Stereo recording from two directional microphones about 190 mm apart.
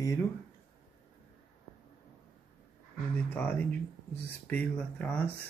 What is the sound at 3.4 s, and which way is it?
Speech, 10° left (ahead or behind).